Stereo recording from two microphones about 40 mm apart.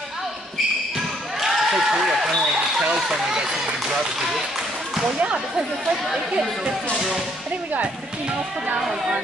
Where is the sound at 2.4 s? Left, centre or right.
Centre.